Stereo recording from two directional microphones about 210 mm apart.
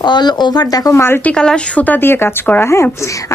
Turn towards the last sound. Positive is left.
turn(degrees=15)  # may be behind; listen again after turning